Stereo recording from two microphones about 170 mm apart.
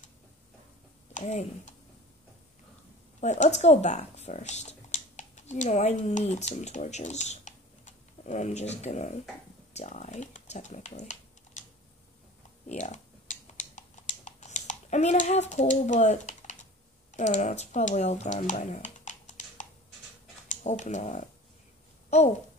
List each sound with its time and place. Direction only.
1.1 s speech: 40° left (ahead or behind)
3.2 s speech: 45° left (ahead or behind)
12.6 s typing: 45° left (ahead or behind)
17.1 s speech: 45° left (ahead or behind)